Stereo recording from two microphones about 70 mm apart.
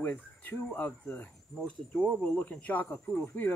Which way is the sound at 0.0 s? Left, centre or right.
Left.